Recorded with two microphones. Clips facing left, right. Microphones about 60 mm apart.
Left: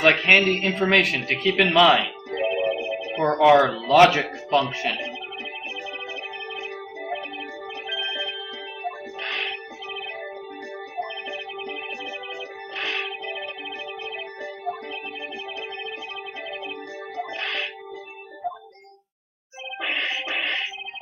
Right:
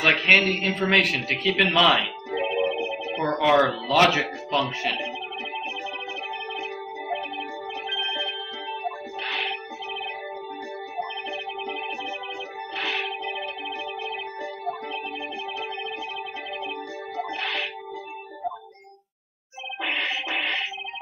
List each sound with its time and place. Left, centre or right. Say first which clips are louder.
0.0 s a man's voice: left 2 dB; centre
2.3 s music: left 1 dB; centre
3.7 s speech: left 5 dB; centre
4.1 s a man's voice: left 3 dB; centre
7.9 s music: left 1 dB; centre
12.7 s music: even; centre
20.0 s music: even; centre